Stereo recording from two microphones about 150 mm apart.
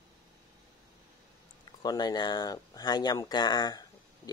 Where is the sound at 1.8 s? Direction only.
30° left (ahead or behind).